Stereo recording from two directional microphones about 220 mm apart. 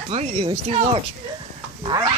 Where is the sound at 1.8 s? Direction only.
20° right (ahead or behind).